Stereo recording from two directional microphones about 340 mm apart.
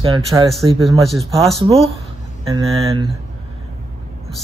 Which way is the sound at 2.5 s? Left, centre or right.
Centre.